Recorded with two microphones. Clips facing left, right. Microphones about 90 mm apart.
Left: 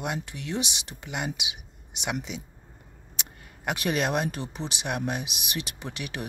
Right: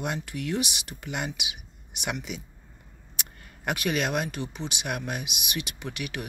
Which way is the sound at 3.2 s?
25° left (ahead or behind).